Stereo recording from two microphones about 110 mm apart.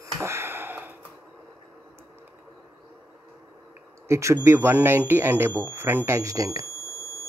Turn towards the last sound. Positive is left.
turn(degrees=-30)  # may be behind; listen again after turning